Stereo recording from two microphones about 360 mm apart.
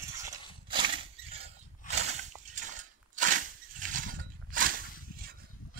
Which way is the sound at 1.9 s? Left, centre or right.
Right.